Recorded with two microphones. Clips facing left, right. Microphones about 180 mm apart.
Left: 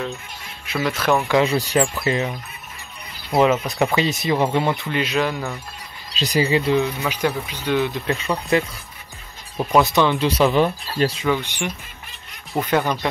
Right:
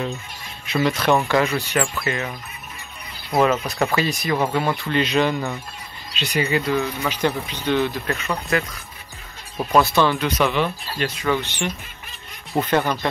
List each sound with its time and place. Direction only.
0.8 s speech: 5° left (ahead or behind)
1.4 s speech: 35° left (ahead or behind)
3.3 s speech: 15° left (ahead or behind)
6.1 s speech: 35° left (ahead or behind)
7.0 s speech: 5° left (ahead or behind)
9.7 s speech: 15° left (ahead or behind)
10.1 s speech: 30° left (ahead or behind)
11.2 s speech: 10° left (ahead or behind)